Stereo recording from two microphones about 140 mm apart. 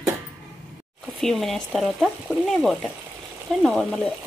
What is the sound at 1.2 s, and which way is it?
Speech, centre (ahead or behind).